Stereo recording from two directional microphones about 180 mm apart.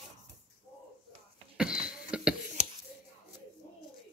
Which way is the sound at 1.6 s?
5° right (ahead or behind).